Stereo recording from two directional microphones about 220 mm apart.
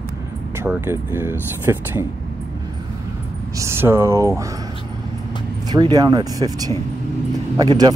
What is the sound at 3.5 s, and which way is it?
Speech, 10° right (ahead or behind).